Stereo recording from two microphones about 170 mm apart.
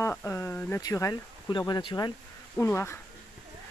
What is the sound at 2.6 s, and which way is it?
Speech, 15° left (ahead or behind).